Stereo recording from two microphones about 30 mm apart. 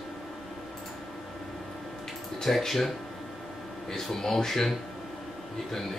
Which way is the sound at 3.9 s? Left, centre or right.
Centre.